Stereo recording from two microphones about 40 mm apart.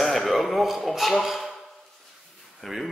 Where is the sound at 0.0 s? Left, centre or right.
Centre.